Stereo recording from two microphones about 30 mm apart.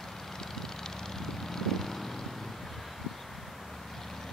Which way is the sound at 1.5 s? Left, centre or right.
Centre.